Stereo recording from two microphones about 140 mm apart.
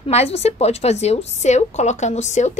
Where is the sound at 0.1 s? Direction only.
50° left (ahead or behind).